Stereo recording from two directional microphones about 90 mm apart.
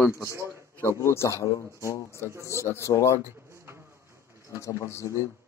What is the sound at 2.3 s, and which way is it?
Speech, 35° right (ahead or behind).